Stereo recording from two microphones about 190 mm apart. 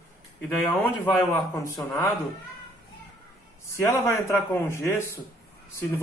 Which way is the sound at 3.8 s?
15° left (ahead or behind).